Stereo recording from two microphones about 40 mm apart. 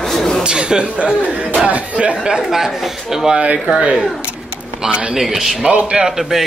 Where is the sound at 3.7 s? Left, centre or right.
Right.